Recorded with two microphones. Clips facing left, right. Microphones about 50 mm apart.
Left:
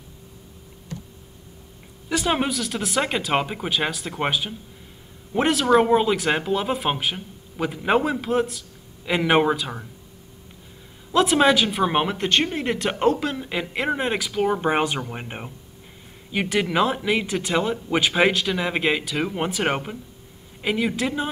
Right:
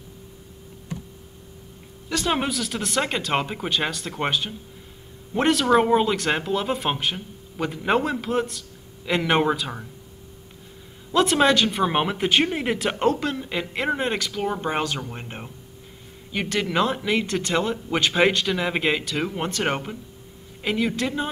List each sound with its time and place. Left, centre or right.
2.0 s speech: centre
11.1 s speech: centre